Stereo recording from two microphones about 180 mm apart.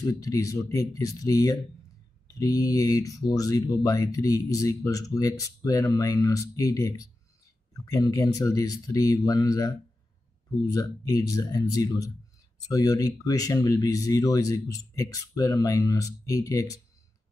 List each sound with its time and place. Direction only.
0.0 s speech: 20° left (ahead or behind)